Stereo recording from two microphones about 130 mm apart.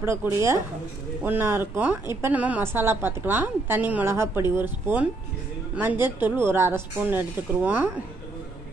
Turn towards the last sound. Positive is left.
turn(degrees=-15)  # may be behind; listen again after turning